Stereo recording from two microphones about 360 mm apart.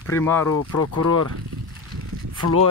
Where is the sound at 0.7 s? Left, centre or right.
Left.